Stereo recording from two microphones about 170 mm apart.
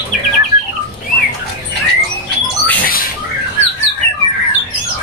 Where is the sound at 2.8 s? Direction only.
60° left (ahead or behind).